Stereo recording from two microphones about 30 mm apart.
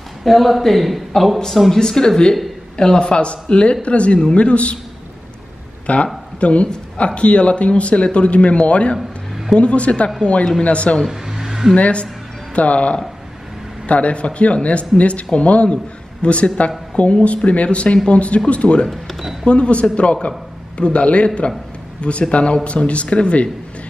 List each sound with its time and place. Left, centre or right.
0.2 s speech: centre
1.8 s speech: left
5.9 s speech: left
11.1 s a sound: centre
11.7 s a man's voice: left
18.9 s speech: centre
19.4 s a man's voice: left
22.3 s speech: left